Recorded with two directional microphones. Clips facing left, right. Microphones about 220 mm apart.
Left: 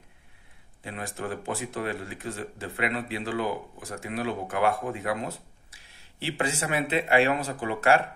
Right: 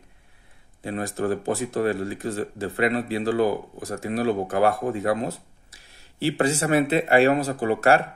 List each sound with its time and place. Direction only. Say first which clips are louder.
0.8 s speech: right 9 dB; 40° right (ahead or behind)